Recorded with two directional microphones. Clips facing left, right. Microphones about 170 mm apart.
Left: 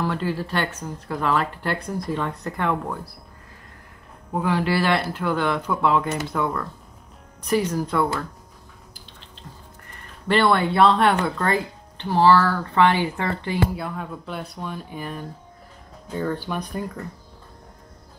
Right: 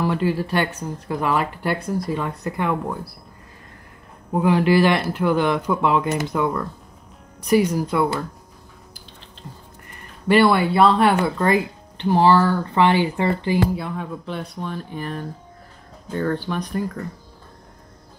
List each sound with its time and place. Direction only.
0.0 s speech: 15° right (ahead or behind)
4.3 s speech: 15° right (ahead or behind)
10.2 s speech: 10° right (ahead or behind)
13.7 s speech: centre (ahead or behind)